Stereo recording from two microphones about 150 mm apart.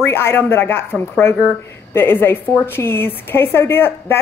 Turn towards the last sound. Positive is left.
turn(degrees=15)  # may be behind; listen again after turning